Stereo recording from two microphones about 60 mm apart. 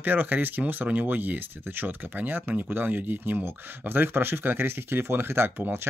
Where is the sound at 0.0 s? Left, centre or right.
Right.